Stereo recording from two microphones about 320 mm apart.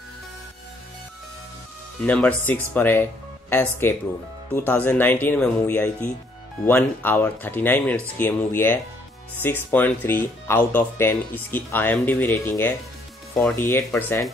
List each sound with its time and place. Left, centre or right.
2.0 s speech: centre